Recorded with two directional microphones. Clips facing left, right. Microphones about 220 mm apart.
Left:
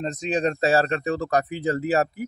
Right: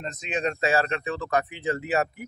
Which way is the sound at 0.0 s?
35° left (ahead or behind).